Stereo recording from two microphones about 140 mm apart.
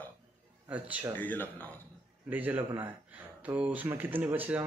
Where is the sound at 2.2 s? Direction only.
10° right (ahead or behind).